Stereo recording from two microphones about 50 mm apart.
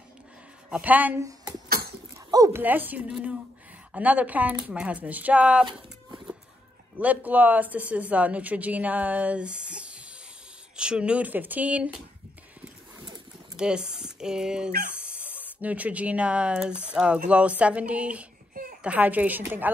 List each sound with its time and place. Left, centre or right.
0.8 s a woman's voice: right
2.6 s a woman's voice: right
3.1 s speech: centre
3.9 s speech: right
7.0 s speech: right
11.2 s a woman's voice: right
13.6 s speech: centre
14.9 s a woman's voice: right